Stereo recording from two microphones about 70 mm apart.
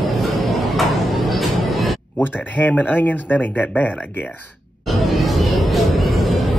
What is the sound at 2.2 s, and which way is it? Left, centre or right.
Speech, left.